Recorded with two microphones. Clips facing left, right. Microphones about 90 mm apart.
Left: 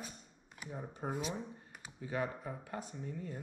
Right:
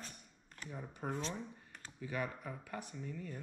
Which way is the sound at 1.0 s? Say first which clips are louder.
Left 2 dB; 15° left (ahead or behind).